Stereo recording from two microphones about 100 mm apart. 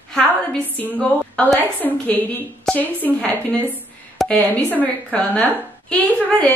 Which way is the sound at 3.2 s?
15° left (ahead or behind).